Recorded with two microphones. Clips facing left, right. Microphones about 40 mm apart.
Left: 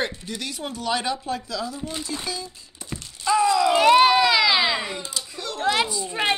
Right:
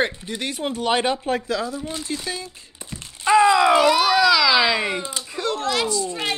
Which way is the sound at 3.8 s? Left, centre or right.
Left.